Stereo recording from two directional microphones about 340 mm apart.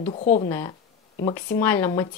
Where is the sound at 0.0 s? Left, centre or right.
Centre.